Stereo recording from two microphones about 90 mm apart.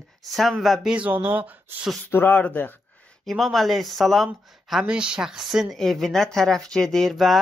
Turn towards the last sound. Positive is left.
turn(degrees=0)  # may be behind; listen again after turning